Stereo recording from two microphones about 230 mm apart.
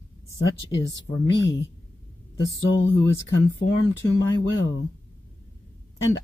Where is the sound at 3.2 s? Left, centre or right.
Left.